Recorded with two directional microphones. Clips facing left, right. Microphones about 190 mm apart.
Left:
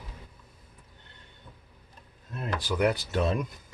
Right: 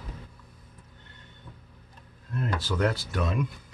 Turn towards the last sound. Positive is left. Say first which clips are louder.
# left 3 dB
turn(degrees=25)  # may be behind; listen again after turning